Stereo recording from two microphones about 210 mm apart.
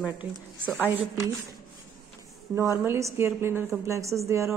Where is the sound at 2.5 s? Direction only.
15° right (ahead or behind).